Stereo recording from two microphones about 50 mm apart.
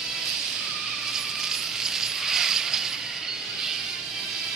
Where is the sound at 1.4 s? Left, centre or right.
Centre.